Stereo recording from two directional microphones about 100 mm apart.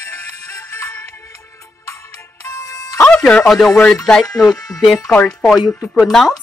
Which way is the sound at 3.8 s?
10° left (ahead or behind).